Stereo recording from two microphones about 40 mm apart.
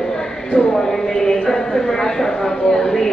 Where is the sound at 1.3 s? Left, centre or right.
Left.